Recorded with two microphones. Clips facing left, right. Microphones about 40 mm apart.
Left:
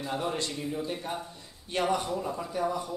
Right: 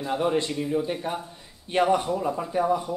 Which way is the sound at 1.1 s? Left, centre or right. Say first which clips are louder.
Right 5 dB; right.